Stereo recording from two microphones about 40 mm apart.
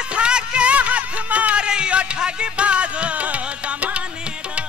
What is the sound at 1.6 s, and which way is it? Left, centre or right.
Music, right.